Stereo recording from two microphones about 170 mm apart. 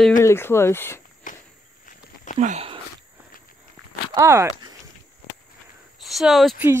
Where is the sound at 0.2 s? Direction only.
15° left (ahead or behind).